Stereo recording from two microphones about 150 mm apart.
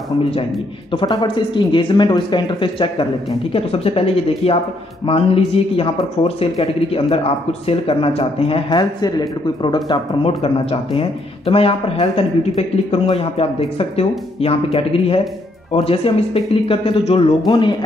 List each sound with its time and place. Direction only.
0.2 s speech: 40° left (ahead or behind)